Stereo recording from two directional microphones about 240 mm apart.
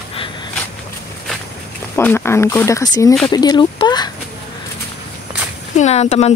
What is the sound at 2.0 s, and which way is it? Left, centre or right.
Speech, centre.